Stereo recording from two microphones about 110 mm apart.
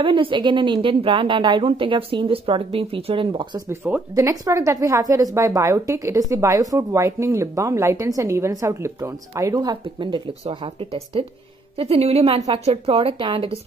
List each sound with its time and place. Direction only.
0.0 s speech: 50° right (ahead or behind)
3.5 s a woman's voice: 25° right (ahead or behind); by 13.6 s 55° right (ahead or behind)